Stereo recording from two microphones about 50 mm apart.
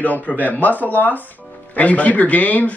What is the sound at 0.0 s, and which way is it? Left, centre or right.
A man's voice, left.